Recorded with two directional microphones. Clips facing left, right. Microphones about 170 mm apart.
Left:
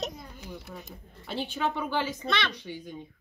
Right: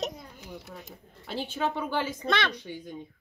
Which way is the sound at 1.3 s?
45° right (ahead or behind).